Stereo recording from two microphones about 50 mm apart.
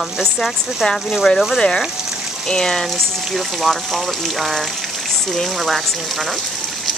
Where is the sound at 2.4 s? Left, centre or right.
Centre.